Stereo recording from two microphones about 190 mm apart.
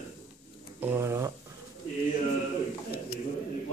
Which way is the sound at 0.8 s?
10° right (ahead or behind).